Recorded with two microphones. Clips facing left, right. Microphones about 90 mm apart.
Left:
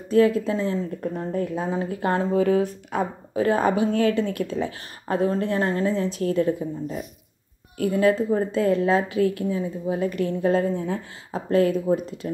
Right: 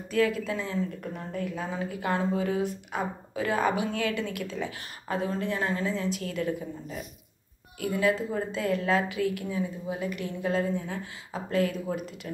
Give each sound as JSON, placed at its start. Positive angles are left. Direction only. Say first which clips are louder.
{"t": 0.1, "sound": "a woman's voice", "louder": "left 8 dB", "side_deg": 30}